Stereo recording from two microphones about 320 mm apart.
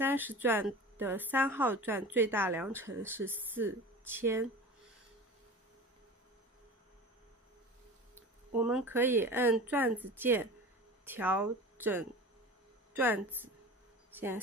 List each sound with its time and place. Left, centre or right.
0.0 s speech: centre
8.1 s a woman's voice: centre